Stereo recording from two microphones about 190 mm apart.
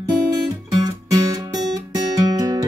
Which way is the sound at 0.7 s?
20° right (ahead or behind).